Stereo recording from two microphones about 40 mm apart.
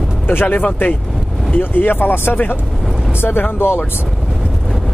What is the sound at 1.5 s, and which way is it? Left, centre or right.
Speech, left.